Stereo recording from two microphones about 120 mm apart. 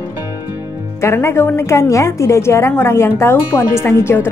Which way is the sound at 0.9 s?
20° left (ahead or behind).